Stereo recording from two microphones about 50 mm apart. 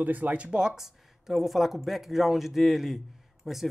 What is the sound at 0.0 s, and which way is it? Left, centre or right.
Speech, right.